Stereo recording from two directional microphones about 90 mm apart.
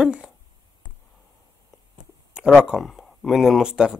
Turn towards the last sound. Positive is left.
turn(degrees=-10)  # may be behind; listen again after turning